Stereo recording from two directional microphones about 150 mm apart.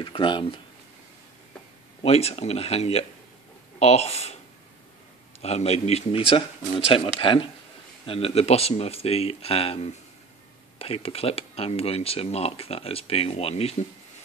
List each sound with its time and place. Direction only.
0.0 s speech: 35° left (ahead or behind)
2.0 s speech: 40° left (ahead or behind)
5.4 s speech: 45° left (ahead or behind)